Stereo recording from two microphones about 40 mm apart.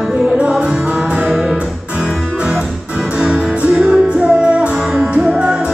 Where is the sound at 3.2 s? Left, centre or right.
Right.